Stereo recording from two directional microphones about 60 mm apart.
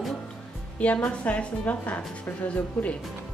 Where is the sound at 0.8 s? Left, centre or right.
Left.